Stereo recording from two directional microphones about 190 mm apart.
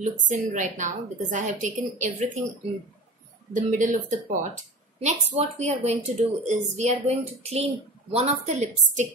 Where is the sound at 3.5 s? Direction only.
40° right (ahead or behind).